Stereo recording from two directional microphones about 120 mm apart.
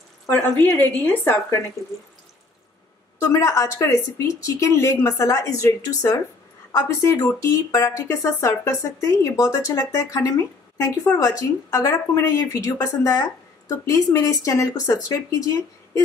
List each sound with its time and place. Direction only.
0.3 s a woman's voice: 15° left (ahead or behind)
3.2 s speech: 25° left (ahead or behind)